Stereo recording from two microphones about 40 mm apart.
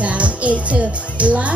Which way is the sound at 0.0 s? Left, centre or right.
Right.